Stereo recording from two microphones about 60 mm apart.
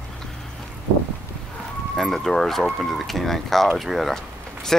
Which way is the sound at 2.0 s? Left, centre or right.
Centre.